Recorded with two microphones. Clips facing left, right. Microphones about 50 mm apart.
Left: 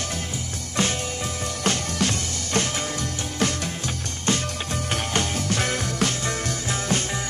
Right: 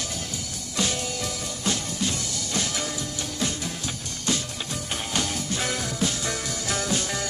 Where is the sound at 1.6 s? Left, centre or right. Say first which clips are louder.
Left 3 dB; left.